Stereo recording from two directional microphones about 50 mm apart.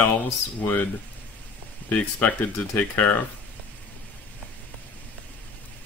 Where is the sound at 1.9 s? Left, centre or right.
Left.